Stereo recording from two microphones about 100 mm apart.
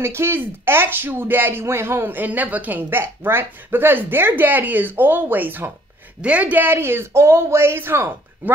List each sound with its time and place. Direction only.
0.0 s speech: 25° right (ahead or behind)